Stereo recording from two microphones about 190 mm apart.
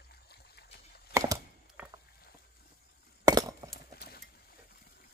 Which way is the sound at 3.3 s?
20° right (ahead or behind).